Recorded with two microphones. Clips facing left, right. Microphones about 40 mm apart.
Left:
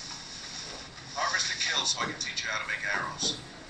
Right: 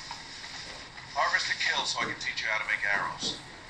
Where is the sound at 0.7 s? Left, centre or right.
Right.